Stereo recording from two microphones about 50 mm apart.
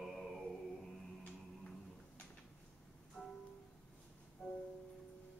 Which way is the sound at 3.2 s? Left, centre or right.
Centre.